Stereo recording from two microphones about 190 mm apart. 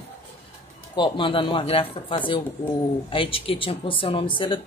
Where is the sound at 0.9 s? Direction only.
25° left (ahead or behind).